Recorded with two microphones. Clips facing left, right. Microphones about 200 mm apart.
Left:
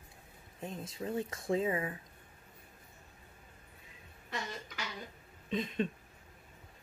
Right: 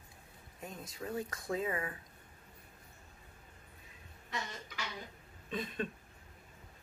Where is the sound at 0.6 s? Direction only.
25° left (ahead or behind).